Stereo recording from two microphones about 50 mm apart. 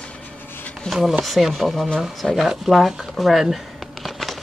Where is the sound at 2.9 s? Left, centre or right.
Centre.